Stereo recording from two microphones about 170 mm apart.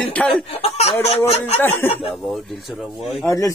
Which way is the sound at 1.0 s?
35° left (ahead or behind).